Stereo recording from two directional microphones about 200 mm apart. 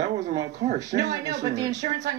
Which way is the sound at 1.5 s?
20° right (ahead or behind).